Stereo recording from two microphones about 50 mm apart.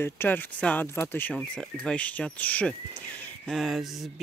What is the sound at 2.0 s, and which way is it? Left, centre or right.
Speech, left.